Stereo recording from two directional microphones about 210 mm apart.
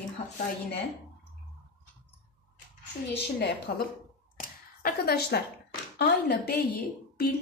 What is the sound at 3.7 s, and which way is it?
Speech, 50° left (ahead or behind).